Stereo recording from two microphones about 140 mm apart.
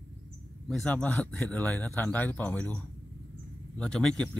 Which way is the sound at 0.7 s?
10° left (ahead or behind).